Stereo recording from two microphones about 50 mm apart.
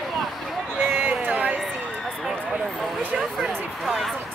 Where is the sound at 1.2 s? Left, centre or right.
Right.